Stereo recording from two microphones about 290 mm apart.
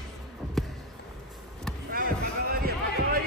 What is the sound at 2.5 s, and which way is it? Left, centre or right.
Basketball bounce, right.